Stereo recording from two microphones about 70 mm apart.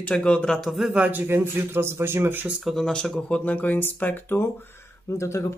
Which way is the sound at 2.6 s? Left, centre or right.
Centre.